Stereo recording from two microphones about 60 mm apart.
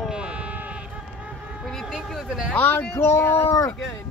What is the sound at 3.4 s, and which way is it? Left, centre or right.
Speech, left.